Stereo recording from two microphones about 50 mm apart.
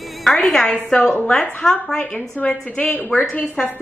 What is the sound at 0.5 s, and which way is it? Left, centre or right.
A woman's voice, centre.